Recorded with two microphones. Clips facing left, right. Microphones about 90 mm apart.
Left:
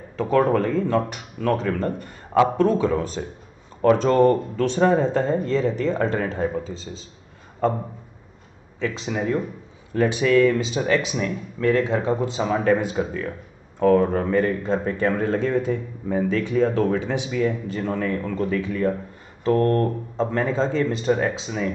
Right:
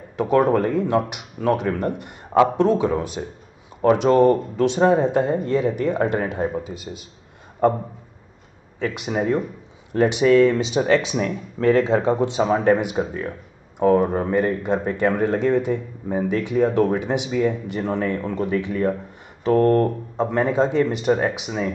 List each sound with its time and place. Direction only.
0.1 s speech: 15° right (ahead or behind)
8.8 s speech: 15° right (ahead or behind)
9.1 s speech: 30° right (ahead or behind)
9.9 s speech: 20° right (ahead or behind)
20.3 s speech: 20° right (ahead or behind)